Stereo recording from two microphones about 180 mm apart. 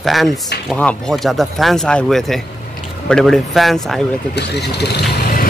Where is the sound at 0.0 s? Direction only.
Centre (ahead or behind).